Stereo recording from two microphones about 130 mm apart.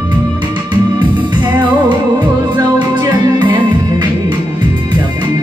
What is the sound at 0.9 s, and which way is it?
Music, 35° right (ahead or behind).